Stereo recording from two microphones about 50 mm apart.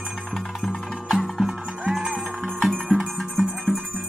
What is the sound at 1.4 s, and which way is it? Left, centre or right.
Music, centre.